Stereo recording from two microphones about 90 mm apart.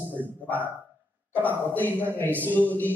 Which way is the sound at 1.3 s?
20° left (ahead or behind).